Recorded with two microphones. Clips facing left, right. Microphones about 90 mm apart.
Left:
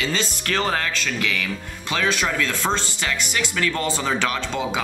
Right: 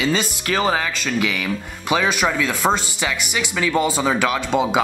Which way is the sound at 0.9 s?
15° right (ahead or behind).